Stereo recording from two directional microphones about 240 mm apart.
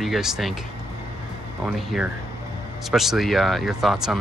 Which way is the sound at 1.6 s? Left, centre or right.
Centre.